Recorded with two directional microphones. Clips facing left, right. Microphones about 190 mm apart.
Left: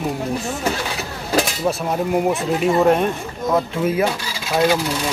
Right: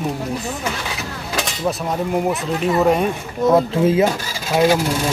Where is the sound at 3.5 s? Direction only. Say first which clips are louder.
Right 5 dB; 25° right (ahead or behind).